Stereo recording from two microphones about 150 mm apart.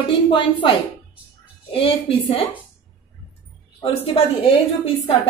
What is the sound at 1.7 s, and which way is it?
Speech, 35° left (ahead or behind).